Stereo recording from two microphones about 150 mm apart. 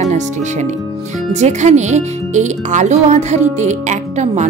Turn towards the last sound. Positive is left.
turn(degrees=-50)  # may be behind; listen again after turning